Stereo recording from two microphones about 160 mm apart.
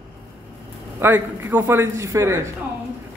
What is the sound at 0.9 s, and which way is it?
A man's voice, 15° right (ahead or behind).